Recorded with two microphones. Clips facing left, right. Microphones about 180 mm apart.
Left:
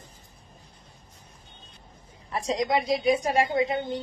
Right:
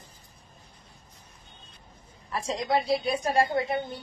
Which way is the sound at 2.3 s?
20° left (ahead or behind).